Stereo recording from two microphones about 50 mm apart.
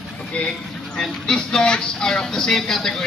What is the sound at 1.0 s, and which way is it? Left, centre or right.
A man's voice, centre.